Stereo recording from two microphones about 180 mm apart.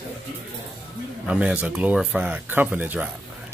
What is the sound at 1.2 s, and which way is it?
Speech, 5° right (ahead or behind).